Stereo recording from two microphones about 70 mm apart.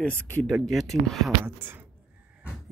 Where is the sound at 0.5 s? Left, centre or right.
Centre.